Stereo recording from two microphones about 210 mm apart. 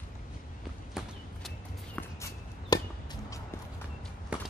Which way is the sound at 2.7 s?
20° left (ahead or behind).